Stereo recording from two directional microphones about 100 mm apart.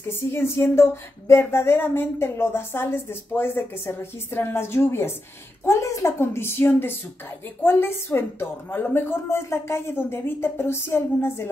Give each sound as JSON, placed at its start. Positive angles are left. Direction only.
{"t": 0.3, "sound": "speech", "side_deg": 25}